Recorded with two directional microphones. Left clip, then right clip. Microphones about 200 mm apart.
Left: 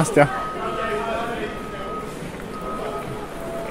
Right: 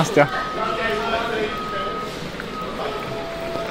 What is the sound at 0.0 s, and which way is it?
Speech, 20° left (ahead or behind).